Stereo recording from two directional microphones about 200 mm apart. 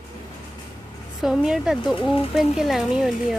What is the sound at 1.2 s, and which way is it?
Speech, 5° right (ahead or behind).